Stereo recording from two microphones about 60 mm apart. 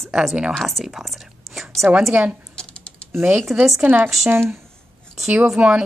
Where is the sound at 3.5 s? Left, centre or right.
Centre.